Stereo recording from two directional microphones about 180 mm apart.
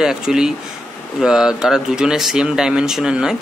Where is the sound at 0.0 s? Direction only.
5° right (ahead or behind).